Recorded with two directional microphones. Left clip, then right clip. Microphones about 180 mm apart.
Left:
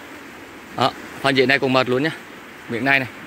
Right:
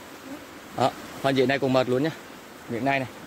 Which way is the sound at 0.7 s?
10° right (ahead or behind).